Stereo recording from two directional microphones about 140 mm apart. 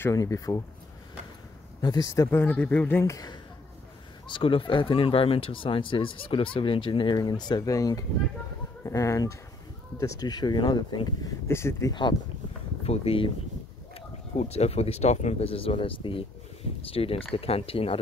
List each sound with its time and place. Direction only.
0.0 s speech: 25° left (ahead or behind)
1.8 s speech: 30° left (ahead or behind)
2.4 s speech: 10° left (ahead or behind)
4.3 s speech: 40° left (ahead or behind); by 11.9 s 20° left (ahead or behind)
11.9 s speech: 30° left (ahead or behind)
12.8 s speech: 45° left (ahead or behind)